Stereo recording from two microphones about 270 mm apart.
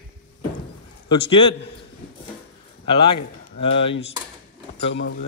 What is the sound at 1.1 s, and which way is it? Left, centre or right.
Speech, centre.